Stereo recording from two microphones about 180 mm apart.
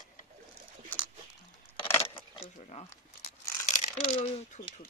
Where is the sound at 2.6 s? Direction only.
40° left (ahead or behind).